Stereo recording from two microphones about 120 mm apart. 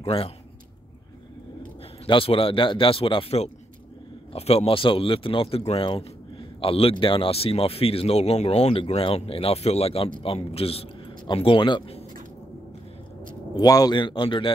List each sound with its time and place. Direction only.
0.0 s speech: 50° left (ahead or behind)
2.0 s speech: 50° left (ahead or behind)
13.6 s a man's voice: 30° left (ahead or behind)